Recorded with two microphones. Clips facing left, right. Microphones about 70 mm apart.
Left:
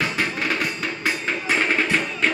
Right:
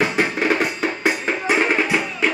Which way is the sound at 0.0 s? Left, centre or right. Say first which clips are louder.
Right 5 dB; centre.